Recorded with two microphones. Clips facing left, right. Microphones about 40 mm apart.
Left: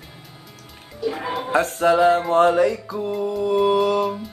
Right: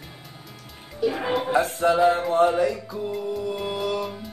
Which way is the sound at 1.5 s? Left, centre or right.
Left.